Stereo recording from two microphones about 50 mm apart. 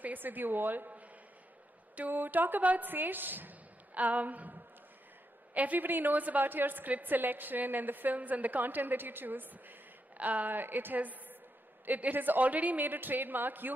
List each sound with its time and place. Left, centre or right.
0.0 s a woman's voice: right